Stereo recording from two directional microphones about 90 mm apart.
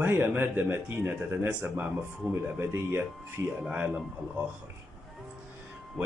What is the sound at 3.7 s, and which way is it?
Speech, 15° right (ahead or behind).